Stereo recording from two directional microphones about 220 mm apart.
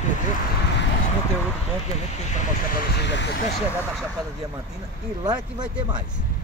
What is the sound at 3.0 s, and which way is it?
Speech, 55° left (ahead or behind).